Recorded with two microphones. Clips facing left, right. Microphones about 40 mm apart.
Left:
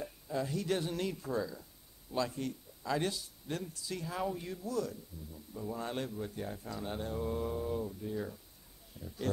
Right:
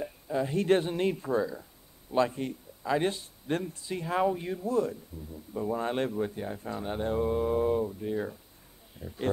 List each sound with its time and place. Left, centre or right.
0.0 s a sound: right
0.6 s speech: right
6.3 s speech: right
7.5 s speech: right